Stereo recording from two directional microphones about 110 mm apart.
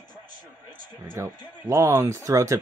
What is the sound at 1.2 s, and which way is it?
Speech, 30° right (ahead or behind).